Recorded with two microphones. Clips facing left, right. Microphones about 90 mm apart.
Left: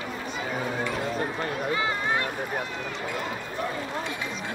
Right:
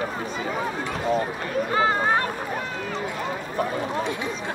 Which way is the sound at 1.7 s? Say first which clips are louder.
Right 9 dB; 40° right (ahead or behind).